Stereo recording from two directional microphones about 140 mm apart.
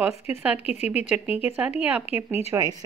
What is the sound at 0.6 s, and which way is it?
Speech, 50° left (ahead or behind).